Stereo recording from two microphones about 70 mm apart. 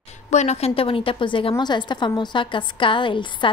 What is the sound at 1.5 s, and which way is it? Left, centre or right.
A woman's voice, left.